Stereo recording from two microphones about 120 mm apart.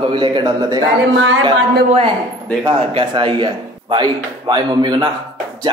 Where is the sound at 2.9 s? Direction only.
45° right (ahead or behind).